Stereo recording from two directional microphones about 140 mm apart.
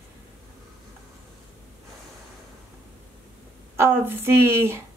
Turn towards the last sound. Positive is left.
turn(degrees=-20)  # may be behind; listen again after turning